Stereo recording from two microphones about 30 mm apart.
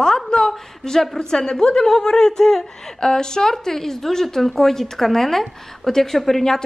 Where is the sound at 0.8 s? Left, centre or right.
Left.